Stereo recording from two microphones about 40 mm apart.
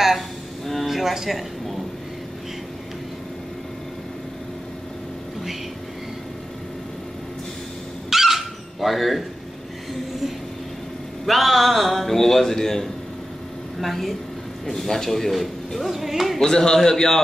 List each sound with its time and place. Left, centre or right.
0.8 s a sound: centre
8.1 s dog: centre
11.2 s a man's voice: centre
15.8 s a man's voice: centre
16.3 s a man's voice: centre